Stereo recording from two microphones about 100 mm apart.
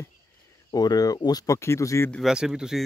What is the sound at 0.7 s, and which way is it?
Speech, 40° left (ahead or behind).